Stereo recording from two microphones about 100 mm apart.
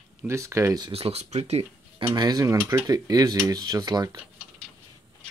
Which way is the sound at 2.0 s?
45° right (ahead or behind).